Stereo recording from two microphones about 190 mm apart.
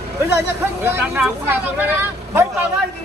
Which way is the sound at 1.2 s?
10° right (ahead or behind).